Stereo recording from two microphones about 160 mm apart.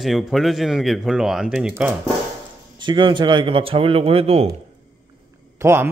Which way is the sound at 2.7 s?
30° right (ahead or behind).